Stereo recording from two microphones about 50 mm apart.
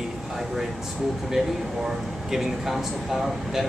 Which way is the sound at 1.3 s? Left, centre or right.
Centre.